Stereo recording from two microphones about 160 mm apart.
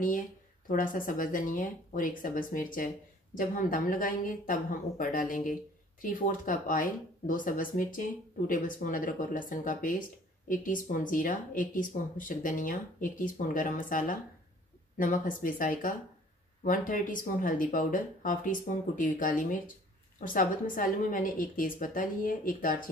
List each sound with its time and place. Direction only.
0.7 s speech: 60° left (ahead or behind)